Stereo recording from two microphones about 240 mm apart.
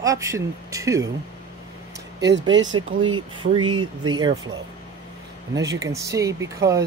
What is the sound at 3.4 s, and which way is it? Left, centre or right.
Speech, right.